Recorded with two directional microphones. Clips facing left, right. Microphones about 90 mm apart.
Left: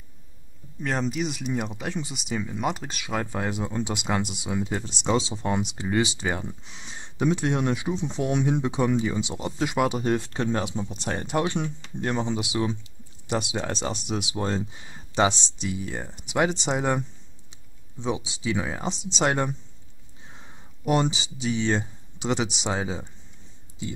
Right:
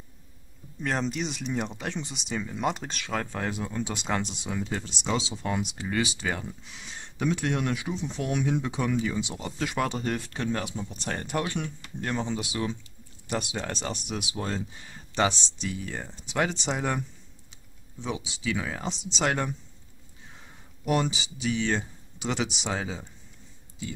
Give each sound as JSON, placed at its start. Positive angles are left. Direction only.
{"t": 0.7, "sound": "speech", "side_deg": 0}
{"t": 5.1, "sound": "speech", "side_deg": 25}
{"t": 18.0, "sound": "speech", "side_deg": 20}
{"t": 20.8, "sound": "speech", "side_deg": 25}